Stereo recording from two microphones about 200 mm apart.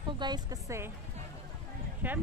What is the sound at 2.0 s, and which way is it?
Speech, 10° right (ahead or behind).